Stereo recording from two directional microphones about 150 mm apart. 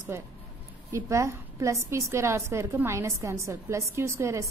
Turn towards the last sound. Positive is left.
turn(degrees=-20)  # may be behind; listen again after turning